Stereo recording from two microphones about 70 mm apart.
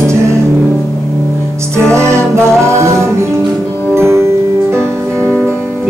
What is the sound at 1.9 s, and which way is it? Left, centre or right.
Music, right.